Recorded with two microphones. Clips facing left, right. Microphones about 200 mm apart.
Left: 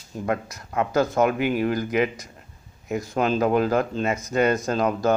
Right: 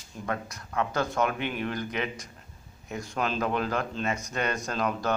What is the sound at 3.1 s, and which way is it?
Speech, 40° left (ahead or behind).